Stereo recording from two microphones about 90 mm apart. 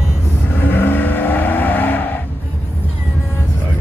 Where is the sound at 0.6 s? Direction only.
25° left (ahead or behind).